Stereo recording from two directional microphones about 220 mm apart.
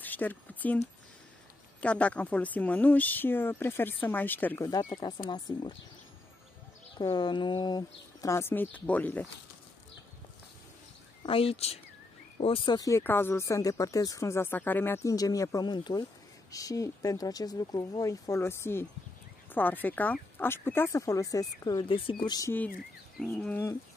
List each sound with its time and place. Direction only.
0.0 s speech: 10° left (ahead or behind)
7.0 s speech: 20° left (ahead or behind)
11.2 s speech: 25° left (ahead or behind); by 23.8 s 10° left (ahead or behind)